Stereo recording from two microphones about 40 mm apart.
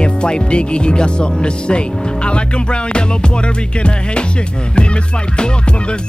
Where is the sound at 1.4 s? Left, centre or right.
Left.